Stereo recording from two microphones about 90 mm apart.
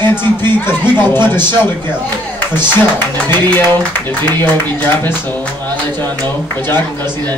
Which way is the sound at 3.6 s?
20° left (ahead or behind).